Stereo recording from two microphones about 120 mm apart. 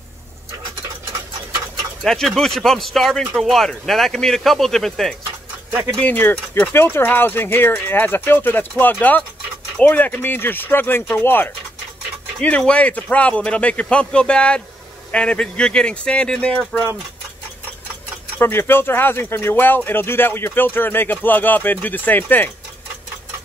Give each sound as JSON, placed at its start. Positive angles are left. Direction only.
{"t": 2.0, "sound": "speech", "side_deg": 5}
{"t": 5.9, "sound": "speech", "side_deg": 15}
{"t": 18.4, "sound": "speech", "side_deg": 20}